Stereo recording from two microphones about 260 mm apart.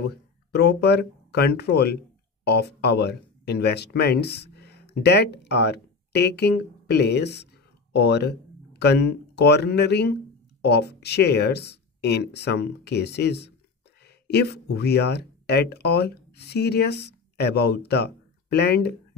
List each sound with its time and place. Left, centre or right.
0.0 s speech: left